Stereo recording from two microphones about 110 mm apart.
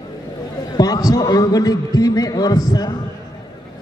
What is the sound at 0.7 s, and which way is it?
A man's voice, 35° left (ahead or behind).